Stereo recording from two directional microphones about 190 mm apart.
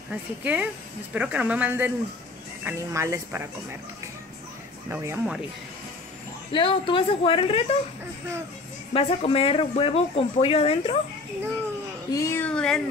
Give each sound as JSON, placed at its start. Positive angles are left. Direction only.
{"t": 0.1, "sound": "speech", "side_deg": -10}
{"t": 4.8, "sound": "speech", "side_deg": -10}
{"t": 6.5, "sound": "speech", "side_deg": 25}
{"t": 8.9, "sound": "speech", "side_deg": 30}
{"t": 12.1, "sound": "speech", "side_deg": 15}